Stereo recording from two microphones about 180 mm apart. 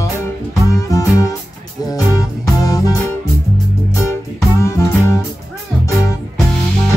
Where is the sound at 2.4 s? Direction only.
20° left (ahead or behind).